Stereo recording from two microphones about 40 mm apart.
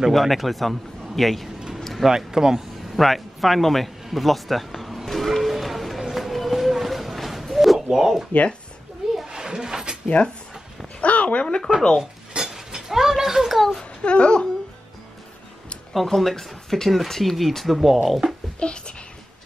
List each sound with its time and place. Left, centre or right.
0.1 s speech: centre
2.0 s speech: centre
3.0 s a sound: centre
10.0 s speech: left
11.0 s a sound: left
11.4 s speech: centre
12.0 s dishes: centre
13.6 s speech: centre
14.0 s speech: left
15.9 s speech: centre
18.6 s speech: left